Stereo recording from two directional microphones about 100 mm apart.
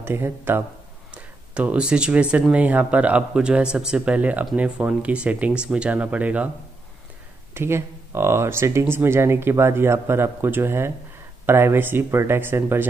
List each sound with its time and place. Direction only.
0.0 s speech: 25° right (ahead or behind)
1.1 s speech: 15° right (ahead or behind)
7.5 s speech: 25° right (ahead or behind)